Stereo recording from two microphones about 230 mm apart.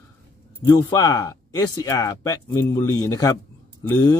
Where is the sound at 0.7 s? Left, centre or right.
Centre.